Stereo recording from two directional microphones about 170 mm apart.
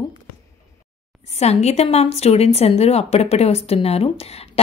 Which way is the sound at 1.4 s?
40° left (ahead or behind).